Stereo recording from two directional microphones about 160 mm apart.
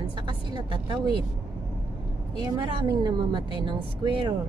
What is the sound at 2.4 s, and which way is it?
Speech, 25° right (ahead or behind).